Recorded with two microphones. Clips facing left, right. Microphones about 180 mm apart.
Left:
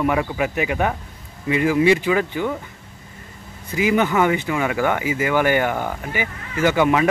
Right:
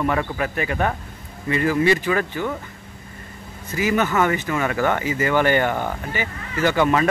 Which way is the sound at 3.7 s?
15° left (ahead or behind).